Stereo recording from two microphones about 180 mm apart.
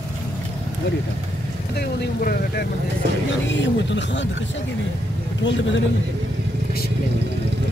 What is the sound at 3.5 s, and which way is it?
Speech, 90° left.